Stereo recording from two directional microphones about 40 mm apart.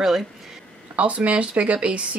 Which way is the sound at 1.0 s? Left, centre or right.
Right.